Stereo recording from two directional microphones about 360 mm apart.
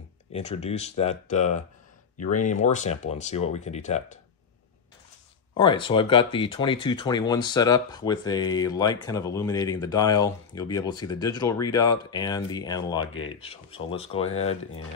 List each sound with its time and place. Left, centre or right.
0.3 s speech: centre
5.6 s speech: centre
14.2 s speech: left